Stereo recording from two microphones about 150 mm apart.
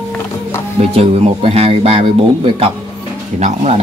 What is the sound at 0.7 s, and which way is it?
Speech, 40° right (ahead or behind).